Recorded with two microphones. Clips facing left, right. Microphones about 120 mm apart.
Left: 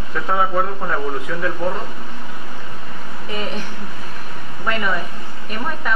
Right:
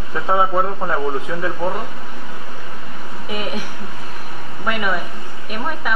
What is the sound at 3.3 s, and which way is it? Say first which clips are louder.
A woman's voice: right 1 dB; 10° right (ahead or behind).